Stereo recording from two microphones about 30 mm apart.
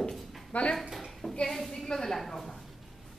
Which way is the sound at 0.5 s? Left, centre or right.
Left.